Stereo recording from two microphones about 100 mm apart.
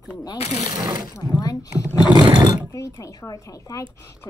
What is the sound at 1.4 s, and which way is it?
Speech, 40° left (ahead or behind).